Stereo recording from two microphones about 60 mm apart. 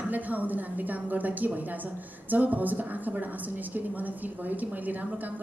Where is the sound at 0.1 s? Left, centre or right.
Right.